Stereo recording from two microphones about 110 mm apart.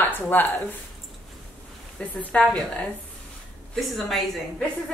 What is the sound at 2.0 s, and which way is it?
A woman's voice, 10° left (ahead or behind).